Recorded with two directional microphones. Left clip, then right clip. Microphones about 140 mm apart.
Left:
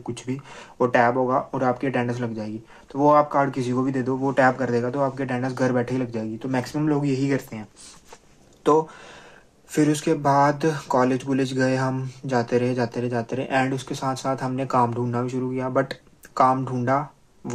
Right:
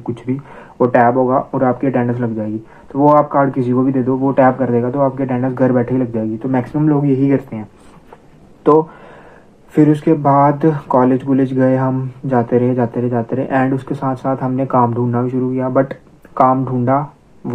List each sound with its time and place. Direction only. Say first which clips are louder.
0.0 s speech: right 9 dB; 15° left (ahead or behind)
9.7 s speech: right 9 dB; 20° left (ahead or behind)